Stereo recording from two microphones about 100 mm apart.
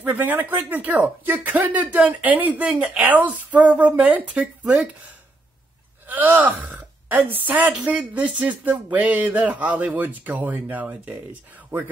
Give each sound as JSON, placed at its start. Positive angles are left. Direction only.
{"t": 0.0, "sound": "speech", "side_deg": -15}
{"t": 6.0, "sound": "speech", "side_deg": -15}